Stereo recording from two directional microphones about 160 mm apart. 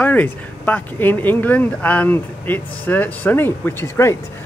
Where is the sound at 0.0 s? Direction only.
10° left (ahead or behind).